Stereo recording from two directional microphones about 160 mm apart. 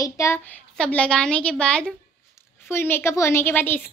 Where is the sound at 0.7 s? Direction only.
5° left (ahead or behind).